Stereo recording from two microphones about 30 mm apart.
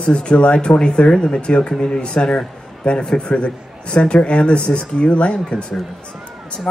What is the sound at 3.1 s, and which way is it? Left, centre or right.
A woman's voice, left.